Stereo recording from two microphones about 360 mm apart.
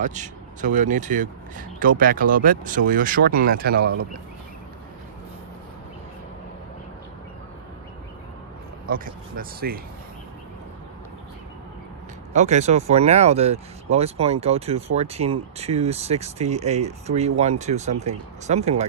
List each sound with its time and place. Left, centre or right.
0.0 s speech: centre
8.8 s speech: right
12.3 s speech: centre